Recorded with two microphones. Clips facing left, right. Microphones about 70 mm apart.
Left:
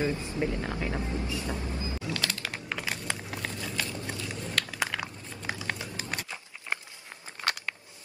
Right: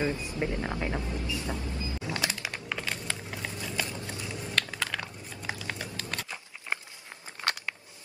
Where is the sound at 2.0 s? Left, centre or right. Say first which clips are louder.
Right 1 dB; right.